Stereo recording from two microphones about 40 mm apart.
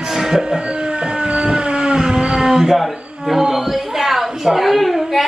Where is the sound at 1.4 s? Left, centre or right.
Right.